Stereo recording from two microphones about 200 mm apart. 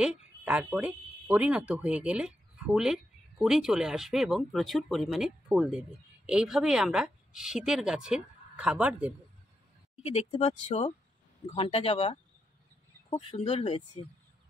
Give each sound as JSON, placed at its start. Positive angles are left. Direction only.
{"t": 0.0, "sound": "speech", "side_deg": -5}
{"t": 10.0, "sound": "speech", "side_deg": 30}
{"t": 13.4, "sound": "speech", "side_deg": 30}